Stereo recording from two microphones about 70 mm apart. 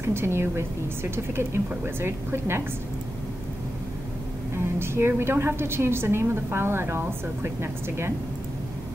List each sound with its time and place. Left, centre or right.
0.0 s a woman's voice: right
4.7 s a woman's voice: right